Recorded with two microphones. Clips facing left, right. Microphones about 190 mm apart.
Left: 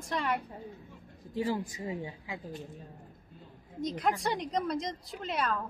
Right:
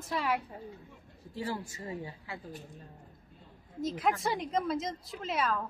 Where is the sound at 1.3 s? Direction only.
15° left (ahead or behind).